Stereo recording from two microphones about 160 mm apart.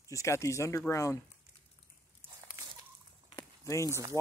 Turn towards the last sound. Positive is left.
turn(degrees=20)  # may be behind; listen again after turning